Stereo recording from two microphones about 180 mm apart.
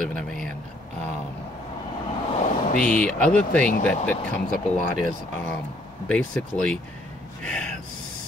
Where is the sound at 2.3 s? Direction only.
45° left (ahead or behind).